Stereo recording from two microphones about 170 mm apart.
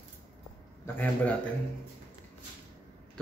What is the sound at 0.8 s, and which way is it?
Speech, 10° left (ahead or behind).